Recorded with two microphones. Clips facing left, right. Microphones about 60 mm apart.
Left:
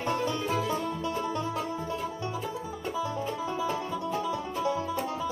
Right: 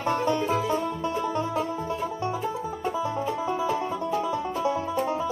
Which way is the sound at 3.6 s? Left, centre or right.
Right.